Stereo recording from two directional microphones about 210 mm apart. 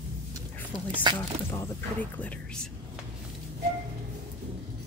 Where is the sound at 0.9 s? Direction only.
20° right (ahead or behind).